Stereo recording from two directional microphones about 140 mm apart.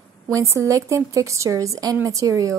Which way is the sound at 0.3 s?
20° right (ahead or behind).